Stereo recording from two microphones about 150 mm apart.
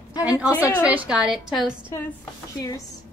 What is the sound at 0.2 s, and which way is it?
A woman's voice, 10° right (ahead or behind).